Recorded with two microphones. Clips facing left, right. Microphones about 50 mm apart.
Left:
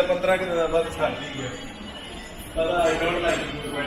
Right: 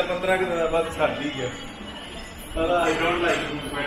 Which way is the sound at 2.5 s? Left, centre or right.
Right.